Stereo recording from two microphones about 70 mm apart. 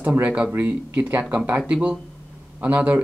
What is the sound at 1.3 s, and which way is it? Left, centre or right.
Speech, centre.